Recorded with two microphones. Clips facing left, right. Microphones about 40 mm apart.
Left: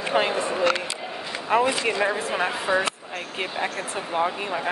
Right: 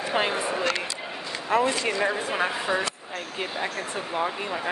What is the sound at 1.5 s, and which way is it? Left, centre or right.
Speech, centre.